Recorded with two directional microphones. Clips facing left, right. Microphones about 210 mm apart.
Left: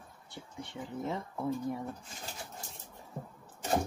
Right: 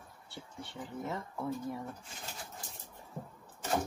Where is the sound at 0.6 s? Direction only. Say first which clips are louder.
Left 3 dB; 15° left (ahead or behind).